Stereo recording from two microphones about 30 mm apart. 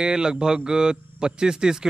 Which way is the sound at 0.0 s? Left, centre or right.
Right.